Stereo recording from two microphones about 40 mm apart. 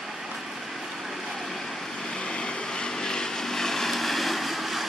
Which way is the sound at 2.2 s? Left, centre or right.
Left.